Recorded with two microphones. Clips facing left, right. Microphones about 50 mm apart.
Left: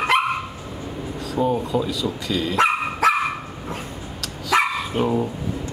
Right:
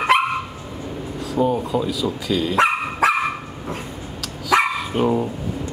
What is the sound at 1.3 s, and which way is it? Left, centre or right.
Speech, centre.